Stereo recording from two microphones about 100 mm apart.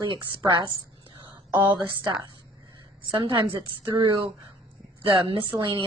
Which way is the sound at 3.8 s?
45° right (ahead or behind).